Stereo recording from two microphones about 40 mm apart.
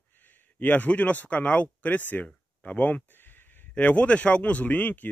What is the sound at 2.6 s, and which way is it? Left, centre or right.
Speech, left.